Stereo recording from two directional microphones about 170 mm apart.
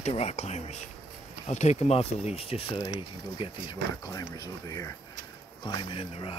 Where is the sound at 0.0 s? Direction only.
40° left (ahead or behind).